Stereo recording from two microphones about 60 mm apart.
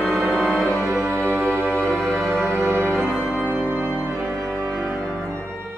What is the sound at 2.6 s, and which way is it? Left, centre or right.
Music, right.